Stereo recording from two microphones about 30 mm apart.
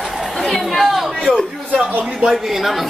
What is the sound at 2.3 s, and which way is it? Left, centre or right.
Speech, centre.